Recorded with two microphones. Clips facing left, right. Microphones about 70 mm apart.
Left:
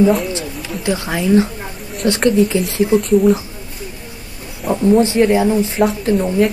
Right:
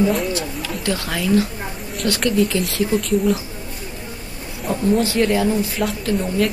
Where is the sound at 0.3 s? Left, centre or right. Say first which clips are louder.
Even; left.